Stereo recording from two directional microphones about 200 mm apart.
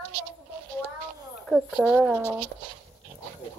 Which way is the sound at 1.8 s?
5° right (ahead or behind).